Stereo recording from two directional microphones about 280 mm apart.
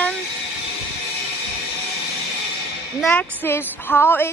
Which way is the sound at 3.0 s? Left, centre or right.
Centre.